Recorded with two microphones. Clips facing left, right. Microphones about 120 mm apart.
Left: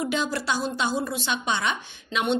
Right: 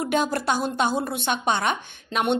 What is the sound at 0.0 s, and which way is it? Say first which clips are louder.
A woman's voice: right 3 dB; 50° right (ahead or behind).